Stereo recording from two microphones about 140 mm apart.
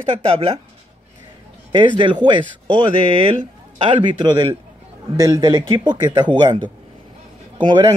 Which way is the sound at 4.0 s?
30° right (ahead or behind).